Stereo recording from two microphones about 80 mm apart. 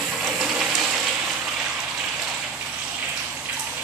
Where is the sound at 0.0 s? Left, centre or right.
Centre.